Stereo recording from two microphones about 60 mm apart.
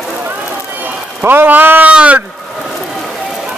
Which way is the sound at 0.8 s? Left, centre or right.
Right.